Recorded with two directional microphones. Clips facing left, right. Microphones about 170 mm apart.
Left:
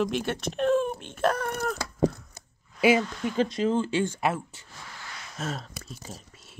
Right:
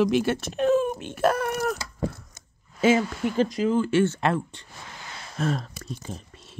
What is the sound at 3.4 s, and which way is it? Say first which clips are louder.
Speech: right 2 dB; 30° left (ahead or behind).